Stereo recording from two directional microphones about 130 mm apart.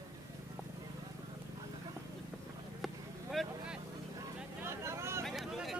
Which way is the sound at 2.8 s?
Centre (ahead or behind).